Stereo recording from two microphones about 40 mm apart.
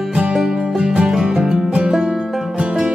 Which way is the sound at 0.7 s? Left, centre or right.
Centre.